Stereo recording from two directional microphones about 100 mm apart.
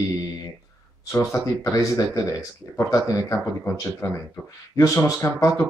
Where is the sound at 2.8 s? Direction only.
35° left (ahead or behind).